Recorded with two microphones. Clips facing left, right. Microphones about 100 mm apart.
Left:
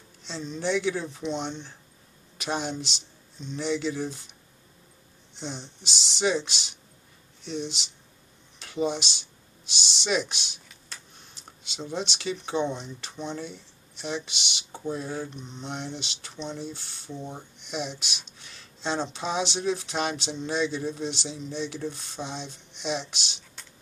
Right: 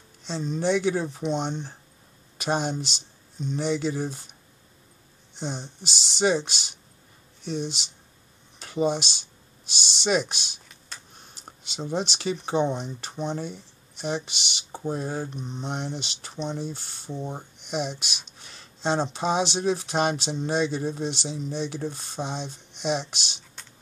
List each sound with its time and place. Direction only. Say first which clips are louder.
0.2 s speech: right 5 dB; 45° right (ahead or behind)
11.9 s speech: right 3 dB; 45° right (ahead or behind)
17.1 s speech: right 4 dB; 25° right (ahead or behind)
17.6 s speech: right 4 dB; 50° right (ahead or behind)
18.4 s a sound: right 5 dB; 45° right (ahead or behind)
19.1 s speech: right 4 dB; 45° right (ahead or behind)